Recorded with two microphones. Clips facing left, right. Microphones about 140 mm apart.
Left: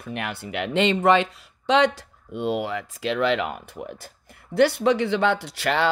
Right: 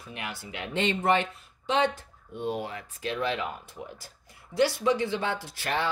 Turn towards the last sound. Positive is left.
turn(degrees=80)